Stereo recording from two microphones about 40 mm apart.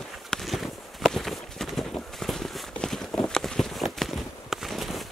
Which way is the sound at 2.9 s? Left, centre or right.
Centre.